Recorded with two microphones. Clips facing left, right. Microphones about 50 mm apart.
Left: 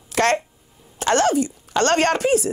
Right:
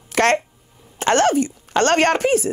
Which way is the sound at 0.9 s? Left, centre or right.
Right.